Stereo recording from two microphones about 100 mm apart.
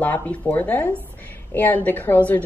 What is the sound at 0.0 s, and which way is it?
A woman's voice, 15° left (ahead or behind).